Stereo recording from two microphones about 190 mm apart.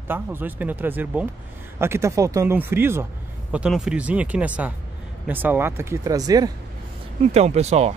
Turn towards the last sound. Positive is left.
turn(degrees=-35)  # may be behind; listen again after turning